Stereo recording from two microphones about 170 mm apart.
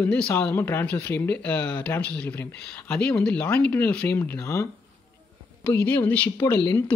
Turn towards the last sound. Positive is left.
turn(degrees=15)  # may be behind; listen again after turning